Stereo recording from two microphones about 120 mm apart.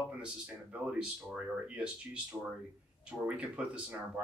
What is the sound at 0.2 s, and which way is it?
Speech, 10° right (ahead or behind).